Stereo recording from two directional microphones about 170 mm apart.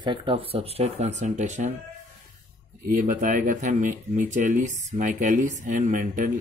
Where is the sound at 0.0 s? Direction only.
30° right (ahead or behind); by 1.7 s 45° right (ahead or behind).